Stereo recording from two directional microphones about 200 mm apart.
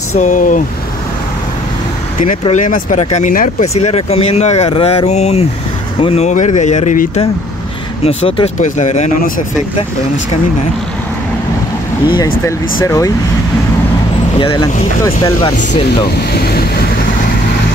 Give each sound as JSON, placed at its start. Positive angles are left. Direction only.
{"t": 0.2, "sound": "speech", "side_deg": 40}
{"t": 2.1, "sound": "speech", "side_deg": 35}
{"t": 12.4, "sound": "speech", "side_deg": 15}
{"t": 14.4, "sound": "speech", "side_deg": 25}